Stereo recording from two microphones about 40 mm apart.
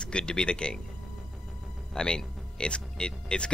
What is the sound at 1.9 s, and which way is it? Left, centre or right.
Speech, left.